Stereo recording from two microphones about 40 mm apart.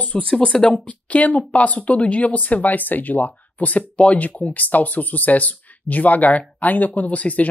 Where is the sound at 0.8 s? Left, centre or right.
Left.